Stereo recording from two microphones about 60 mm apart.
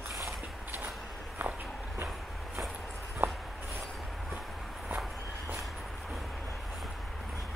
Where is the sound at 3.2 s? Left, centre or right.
Right.